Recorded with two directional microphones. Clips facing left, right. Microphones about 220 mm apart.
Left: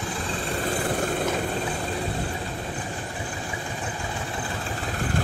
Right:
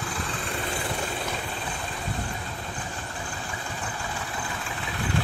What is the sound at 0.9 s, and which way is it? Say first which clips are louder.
Vehicle: left 6 dB; 50° left (ahead or behind).